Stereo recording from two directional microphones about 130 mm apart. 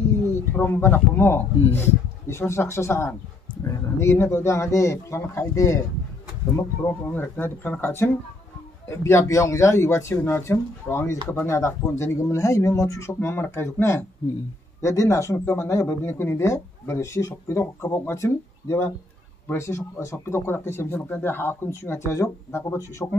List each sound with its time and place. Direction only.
0.3 s speech: 15° left (ahead or behind)
7.1 s speech: 15° left (ahead or behind)